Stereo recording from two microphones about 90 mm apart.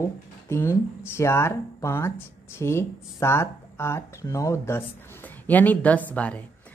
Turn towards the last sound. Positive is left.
turn(degrees=15)  # may be behind; listen again after turning